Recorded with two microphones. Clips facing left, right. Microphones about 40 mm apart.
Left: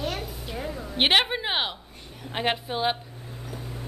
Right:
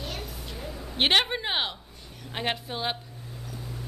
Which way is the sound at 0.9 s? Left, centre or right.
Centre.